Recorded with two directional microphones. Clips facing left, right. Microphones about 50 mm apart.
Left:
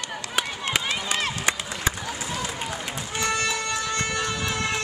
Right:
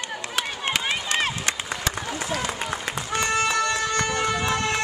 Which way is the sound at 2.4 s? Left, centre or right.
Right.